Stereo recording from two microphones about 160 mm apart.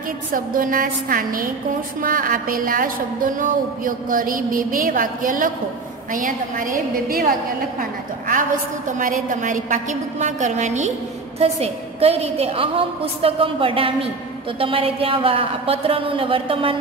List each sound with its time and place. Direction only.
0.3 s a woman's voice: 60° right (ahead or behind)
8.3 s a woman's voice: 55° right (ahead or behind); by 16.7 s 35° right (ahead or behind)